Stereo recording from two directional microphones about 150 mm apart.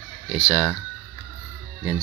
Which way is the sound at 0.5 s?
5° left (ahead or behind).